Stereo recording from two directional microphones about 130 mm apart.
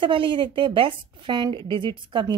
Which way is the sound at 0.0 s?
40° right (ahead or behind).